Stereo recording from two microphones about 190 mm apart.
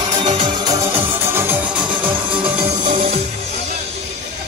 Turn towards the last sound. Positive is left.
turn(degrees=-30)  # may be behind; listen again after turning